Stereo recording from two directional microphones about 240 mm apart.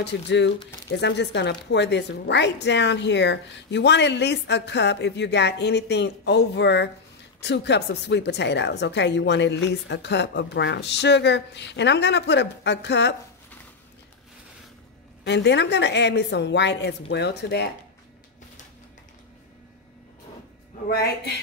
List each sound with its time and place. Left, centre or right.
0.0 s a woman's voice: left
15.2 s a woman's voice: left